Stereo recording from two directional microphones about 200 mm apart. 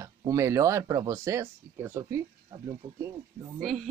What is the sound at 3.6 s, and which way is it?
Speech, centre (ahead or behind).